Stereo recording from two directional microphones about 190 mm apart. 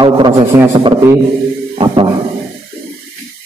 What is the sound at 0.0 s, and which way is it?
A man's voice, 25° right (ahead or behind).